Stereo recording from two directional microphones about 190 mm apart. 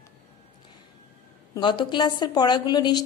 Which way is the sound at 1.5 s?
25° left (ahead or behind).